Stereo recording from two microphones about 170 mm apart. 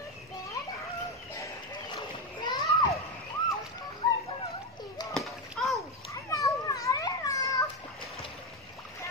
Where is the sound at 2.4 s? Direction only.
20° left (ahead or behind).